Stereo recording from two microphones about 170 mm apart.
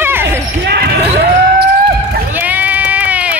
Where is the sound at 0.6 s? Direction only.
70° right (ahead or behind).